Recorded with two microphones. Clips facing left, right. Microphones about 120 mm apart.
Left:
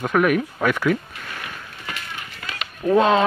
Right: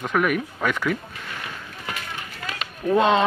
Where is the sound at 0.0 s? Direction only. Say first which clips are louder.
Left 4 dB; 5° left (ahead or behind).